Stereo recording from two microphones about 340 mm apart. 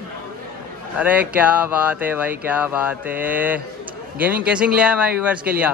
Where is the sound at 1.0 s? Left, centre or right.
Centre.